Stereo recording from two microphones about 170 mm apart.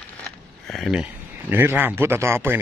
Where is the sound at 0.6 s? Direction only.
Centre (ahead or behind).